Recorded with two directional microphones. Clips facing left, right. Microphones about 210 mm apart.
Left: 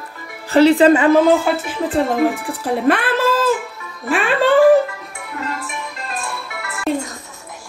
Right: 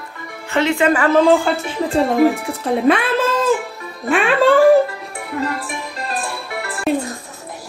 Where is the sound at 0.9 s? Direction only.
20° left (ahead or behind).